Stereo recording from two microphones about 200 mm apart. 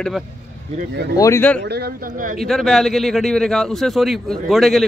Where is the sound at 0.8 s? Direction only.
55° right (ahead or behind).